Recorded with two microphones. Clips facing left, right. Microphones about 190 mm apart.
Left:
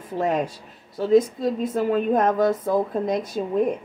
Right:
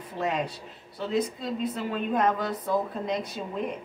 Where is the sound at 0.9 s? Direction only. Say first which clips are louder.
Left 10 dB; 45° left (ahead or behind).